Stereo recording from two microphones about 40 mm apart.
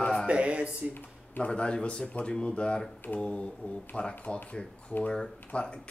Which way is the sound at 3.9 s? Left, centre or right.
Left.